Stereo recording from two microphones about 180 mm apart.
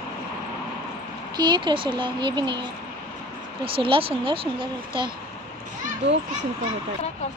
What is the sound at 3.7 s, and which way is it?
Speech, 30° right (ahead or behind).